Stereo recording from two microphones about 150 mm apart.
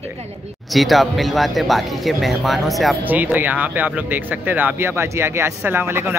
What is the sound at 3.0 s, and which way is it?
Speech, 10° right (ahead or behind).